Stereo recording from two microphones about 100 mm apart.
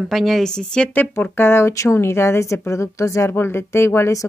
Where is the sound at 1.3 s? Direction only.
25° left (ahead or behind).